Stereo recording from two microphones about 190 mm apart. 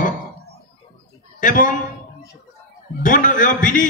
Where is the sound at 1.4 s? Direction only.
45° left (ahead or behind).